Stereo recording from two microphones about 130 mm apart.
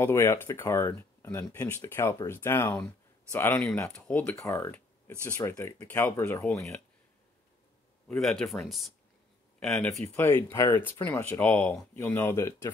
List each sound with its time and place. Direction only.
0.0 s speech: 20° left (ahead or behind)
4.4 s speech: 20° left (ahead or behind)
8.2 s speech: centre (ahead or behind)
9.9 s speech: 15° left (ahead or behind)